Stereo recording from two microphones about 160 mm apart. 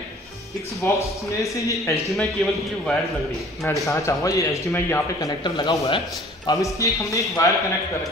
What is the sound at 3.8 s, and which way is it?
Speech, 20° left (ahead or behind).